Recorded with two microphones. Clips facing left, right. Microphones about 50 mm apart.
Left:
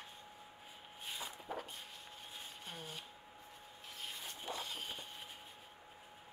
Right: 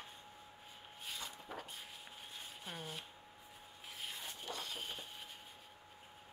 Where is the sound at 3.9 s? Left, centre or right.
Centre.